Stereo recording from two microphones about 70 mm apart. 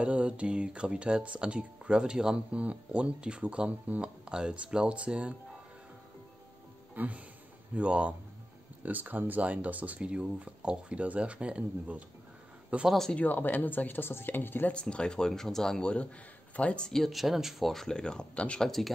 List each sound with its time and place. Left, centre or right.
0.0 s speech: centre
7.0 s speech: centre
12.8 s speech: centre
13.1 s speech: left
14.7 s speech: centre